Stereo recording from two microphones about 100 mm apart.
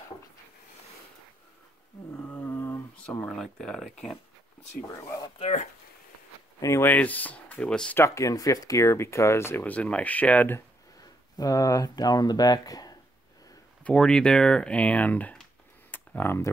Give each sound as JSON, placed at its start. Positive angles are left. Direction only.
{"t": 2.1, "sound": "a sound", "side_deg": 15}
{"t": 4.7, "sound": "speech", "side_deg": 30}
{"t": 6.8, "sound": "speech", "side_deg": 15}
{"t": 8.0, "sound": "speech", "side_deg": 30}
{"t": 9.7, "sound": "speech", "side_deg": 15}
{"t": 11.3, "sound": "speech", "side_deg": 35}
{"t": 13.8, "sound": "speech", "side_deg": 10}
{"t": 15.9, "sound": "tick", "side_deg": 20}